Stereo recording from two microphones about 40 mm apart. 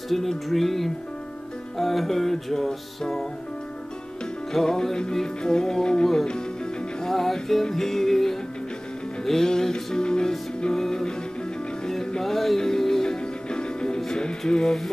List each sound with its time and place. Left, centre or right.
0.1 s speech: centre
1.8 s music: centre
4.5 s music: centre
7.1 s music: centre